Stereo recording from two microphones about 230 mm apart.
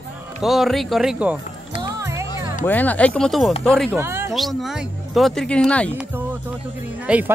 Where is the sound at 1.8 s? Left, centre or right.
Centre.